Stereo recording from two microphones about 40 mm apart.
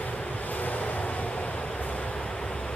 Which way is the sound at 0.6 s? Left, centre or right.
Left.